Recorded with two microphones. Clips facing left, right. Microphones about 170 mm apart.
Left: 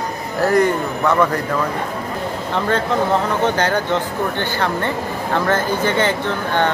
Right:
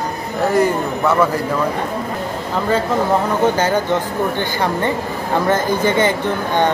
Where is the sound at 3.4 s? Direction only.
10° right (ahead or behind).